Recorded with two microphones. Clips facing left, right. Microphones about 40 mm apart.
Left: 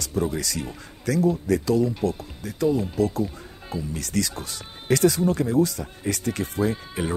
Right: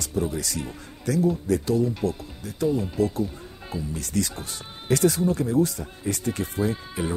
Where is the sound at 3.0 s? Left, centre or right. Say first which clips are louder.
Even; right.